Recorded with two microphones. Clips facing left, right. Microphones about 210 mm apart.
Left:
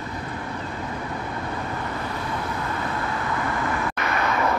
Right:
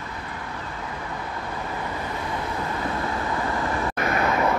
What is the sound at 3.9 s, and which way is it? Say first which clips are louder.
Vehicle: right 2 dB; 30° right (ahead or behind).